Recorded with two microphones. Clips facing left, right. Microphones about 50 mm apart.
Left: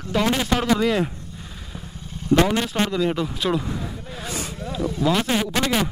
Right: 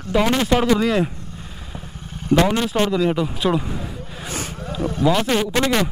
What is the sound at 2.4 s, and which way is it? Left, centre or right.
Speech, centre.